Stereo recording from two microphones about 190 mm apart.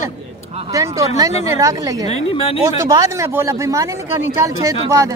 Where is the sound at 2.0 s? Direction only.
30° left (ahead or behind).